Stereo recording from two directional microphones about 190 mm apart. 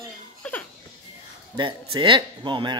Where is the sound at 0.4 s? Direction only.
5° left (ahead or behind).